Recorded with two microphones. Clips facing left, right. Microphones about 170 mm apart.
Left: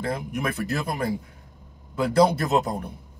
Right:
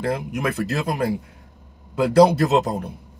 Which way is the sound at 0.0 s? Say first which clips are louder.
Right 4 dB; 70° right (ahead or behind).